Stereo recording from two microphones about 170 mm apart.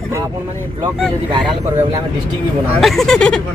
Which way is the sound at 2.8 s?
Centre (ahead or behind).